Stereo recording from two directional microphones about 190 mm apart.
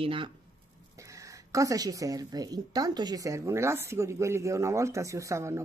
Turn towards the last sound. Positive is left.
turn(degrees=-15)  # may be behind; listen again after turning